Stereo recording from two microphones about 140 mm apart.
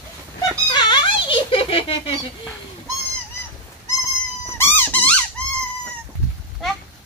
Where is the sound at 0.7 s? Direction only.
30° left (ahead or behind).